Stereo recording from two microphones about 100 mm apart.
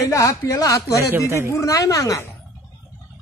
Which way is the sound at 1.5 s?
35° left (ahead or behind).